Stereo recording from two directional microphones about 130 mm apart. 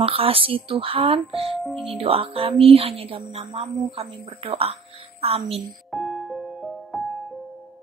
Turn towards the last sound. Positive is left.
turn(degrees=0)  # may be behind; listen again after turning